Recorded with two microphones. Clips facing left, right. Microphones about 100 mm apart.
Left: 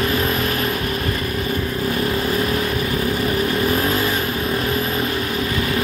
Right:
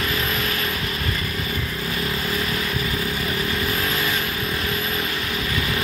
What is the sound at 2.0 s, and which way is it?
Vehicle, 40° left (ahead or behind).